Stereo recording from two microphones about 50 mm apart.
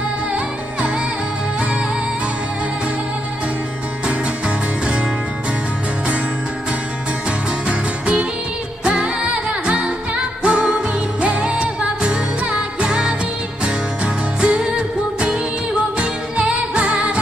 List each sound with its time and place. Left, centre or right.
7.6 s music: right
14.4 s music: right